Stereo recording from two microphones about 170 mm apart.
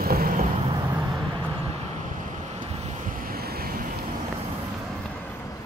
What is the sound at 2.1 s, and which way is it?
Vehicle, 45° right (ahead or behind).